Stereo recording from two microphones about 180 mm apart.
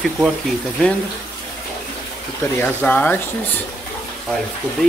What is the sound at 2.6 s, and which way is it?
Speech, 10° left (ahead or behind).